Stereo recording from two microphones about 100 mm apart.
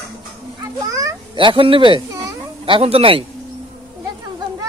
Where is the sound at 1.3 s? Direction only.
60° right (ahead or behind).